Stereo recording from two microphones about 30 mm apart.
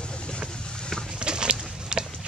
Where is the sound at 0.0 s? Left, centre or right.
Left.